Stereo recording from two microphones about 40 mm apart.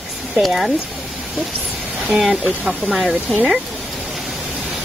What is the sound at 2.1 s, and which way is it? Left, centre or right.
Speech, centre.